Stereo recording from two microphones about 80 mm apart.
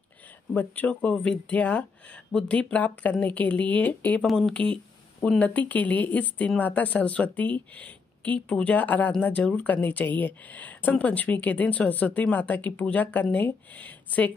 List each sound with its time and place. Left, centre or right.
0.6 s speech: centre
4.3 s speech: centre
5.4 s speech: centre